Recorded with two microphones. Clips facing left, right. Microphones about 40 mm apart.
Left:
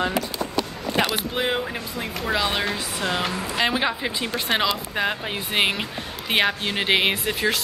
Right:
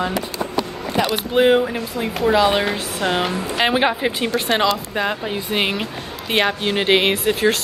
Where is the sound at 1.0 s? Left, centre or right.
Left.